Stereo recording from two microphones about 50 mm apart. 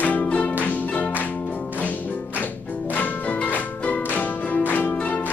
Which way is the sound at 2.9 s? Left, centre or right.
Left.